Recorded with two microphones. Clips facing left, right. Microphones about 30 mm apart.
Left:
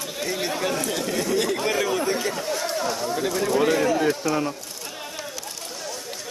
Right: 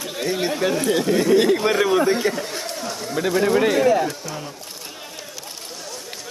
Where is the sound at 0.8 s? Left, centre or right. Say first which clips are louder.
Right 7 dB; right.